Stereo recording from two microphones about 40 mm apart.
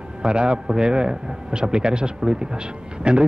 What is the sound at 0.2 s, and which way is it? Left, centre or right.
A man's voice, right.